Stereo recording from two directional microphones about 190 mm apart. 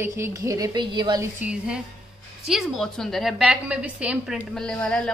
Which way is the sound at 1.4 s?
5° right (ahead or behind).